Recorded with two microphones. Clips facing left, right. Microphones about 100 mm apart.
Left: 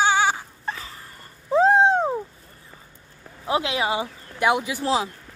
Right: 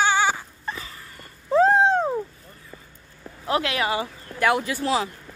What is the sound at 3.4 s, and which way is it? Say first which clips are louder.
Speech: even; 15° left (ahead or behind).